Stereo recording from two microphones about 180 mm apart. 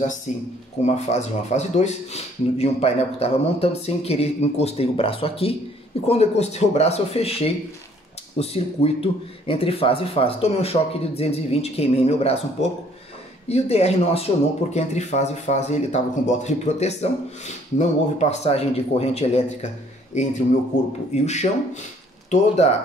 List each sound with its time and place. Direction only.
0.3 s speech: 40° left (ahead or behind)
20.7 s speech: 40° left (ahead or behind)